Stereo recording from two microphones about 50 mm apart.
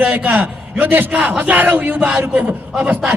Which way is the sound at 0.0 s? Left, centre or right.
Right.